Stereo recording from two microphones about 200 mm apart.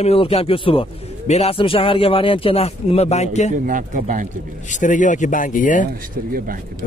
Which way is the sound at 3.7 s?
40° right (ahead or behind).